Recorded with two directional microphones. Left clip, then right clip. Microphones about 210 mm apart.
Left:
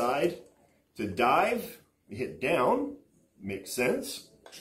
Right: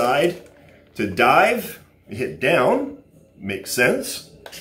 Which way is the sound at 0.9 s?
10° right (ahead or behind).